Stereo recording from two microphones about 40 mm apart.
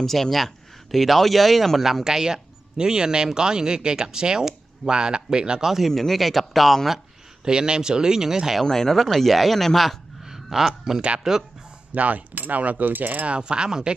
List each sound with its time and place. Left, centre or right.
0.0 s speech: centre; by 5.7 s right
5.9 s speech: centre
7.4 s speech: right
8.6 s speech: centre
10.2 s a sound: centre
11.3 s speech: centre
11.9 s coin: right
13.2 s speech: right